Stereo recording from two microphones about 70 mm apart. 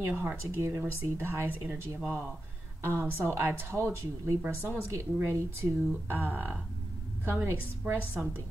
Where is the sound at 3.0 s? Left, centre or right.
Right.